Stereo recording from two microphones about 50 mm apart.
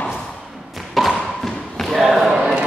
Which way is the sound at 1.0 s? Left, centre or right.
Centre.